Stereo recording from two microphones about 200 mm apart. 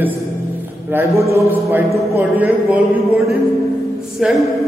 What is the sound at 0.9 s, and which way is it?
A man's voice, 15° right (ahead or behind).